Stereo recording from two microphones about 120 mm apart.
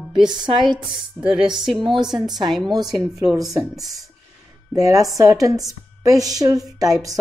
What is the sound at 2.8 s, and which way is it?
Music, 30° right (ahead or behind).